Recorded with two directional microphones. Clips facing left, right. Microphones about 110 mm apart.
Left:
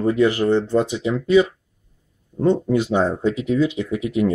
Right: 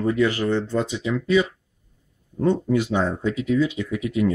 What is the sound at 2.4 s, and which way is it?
Speech, 25° left (ahead or behind).